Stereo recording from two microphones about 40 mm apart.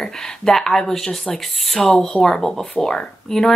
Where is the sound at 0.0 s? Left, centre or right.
Centre.